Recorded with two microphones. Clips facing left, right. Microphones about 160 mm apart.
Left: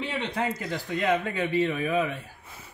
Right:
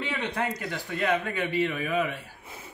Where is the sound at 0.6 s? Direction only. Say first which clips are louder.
Left 1 dB; 25° left (ahead or behind).